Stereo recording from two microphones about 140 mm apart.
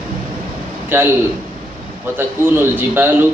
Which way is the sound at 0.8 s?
15° right (ahead or behind).